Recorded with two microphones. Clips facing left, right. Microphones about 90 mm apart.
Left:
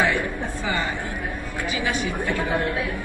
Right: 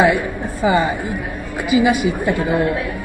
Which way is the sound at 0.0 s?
15° right (ahead or behind).